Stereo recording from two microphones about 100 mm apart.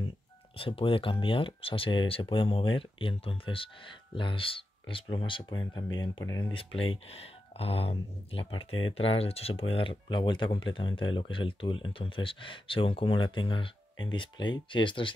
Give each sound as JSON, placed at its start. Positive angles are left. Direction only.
{"t": 0.6, "sound": "speech", "side_deg": 60}
{"t": 6.5, "sound": "speech", "side_deg": 65}